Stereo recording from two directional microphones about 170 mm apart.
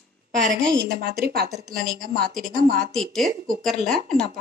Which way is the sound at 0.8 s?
65° right (ahead or behind).